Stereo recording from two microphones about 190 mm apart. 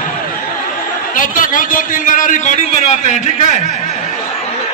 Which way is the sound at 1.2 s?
45° left (ahead or behind).